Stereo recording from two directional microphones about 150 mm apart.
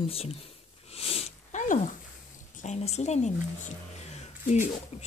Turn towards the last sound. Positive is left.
turn(degrees=45)  # may be behind; listen again after turning